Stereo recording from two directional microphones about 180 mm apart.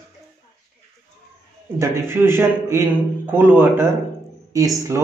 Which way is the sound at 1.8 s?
15° right (ahead or behind).